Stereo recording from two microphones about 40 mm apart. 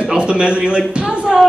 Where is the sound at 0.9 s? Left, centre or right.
Right.